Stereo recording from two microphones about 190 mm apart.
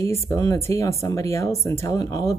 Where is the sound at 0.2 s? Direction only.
15° left (ahead or behind).